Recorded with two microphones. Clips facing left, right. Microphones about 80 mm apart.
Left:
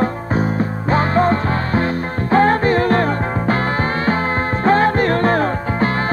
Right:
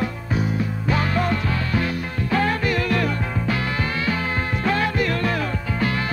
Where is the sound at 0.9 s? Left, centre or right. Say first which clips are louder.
Left 7 dB; left.